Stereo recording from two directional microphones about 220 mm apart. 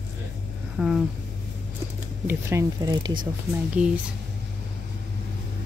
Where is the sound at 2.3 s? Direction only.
15° right (ahead or behind).